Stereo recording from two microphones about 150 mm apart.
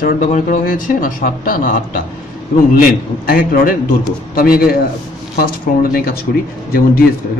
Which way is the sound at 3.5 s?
70° left (ahead or behind).